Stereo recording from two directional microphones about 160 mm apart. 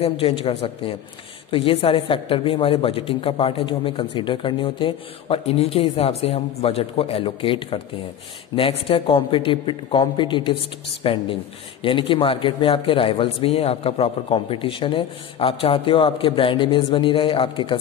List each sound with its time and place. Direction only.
0.0 s a man's voice: 35° left (ahead or behind)